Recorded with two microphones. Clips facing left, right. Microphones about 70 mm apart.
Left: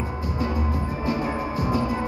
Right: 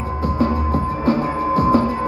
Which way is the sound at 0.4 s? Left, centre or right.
Right.